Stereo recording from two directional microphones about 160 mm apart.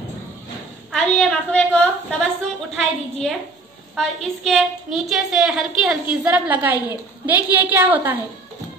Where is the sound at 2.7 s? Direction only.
Centre (ahead or behind).